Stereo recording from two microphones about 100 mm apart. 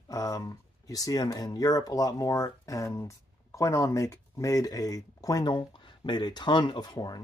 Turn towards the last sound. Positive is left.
turn(degrees=40)  # may be behind; listen again after turning